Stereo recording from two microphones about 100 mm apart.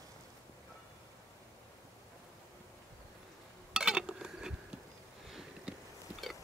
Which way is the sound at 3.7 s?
5° right (ahead or behind).